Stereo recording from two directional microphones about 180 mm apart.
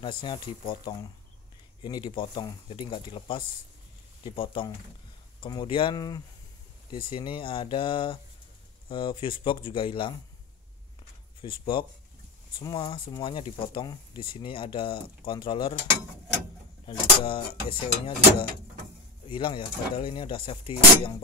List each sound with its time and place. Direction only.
0.0 s speech: 25° left (ahead or behind)
11.4 s speech: 30° left (ahead or behind)
16.8 s speech: 30° left (ahead or behind)
19.2 s speech: 25° left (ahead or behind)